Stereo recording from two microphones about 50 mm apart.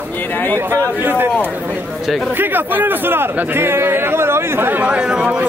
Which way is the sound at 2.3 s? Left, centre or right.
Right.